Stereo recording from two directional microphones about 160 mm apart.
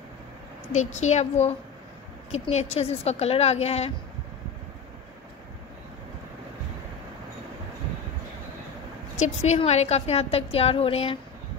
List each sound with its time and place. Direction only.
0.7 s a woman's voice: 45° left (ahead or behind)
9.1 s a woman's voice: 45° left (ahead or behind)